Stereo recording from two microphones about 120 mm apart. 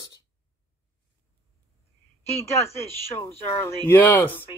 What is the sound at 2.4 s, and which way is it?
Speech, 20° left (ahead or behind).